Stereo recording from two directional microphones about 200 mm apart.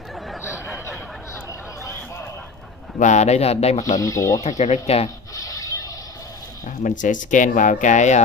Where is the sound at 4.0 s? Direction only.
15° left (ahead or behind).